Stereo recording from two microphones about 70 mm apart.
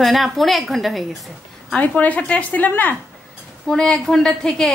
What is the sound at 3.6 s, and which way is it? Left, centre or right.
Speech, centre.